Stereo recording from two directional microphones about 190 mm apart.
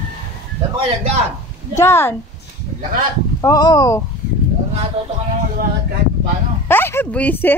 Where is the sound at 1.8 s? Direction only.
15° left (ahead or behind).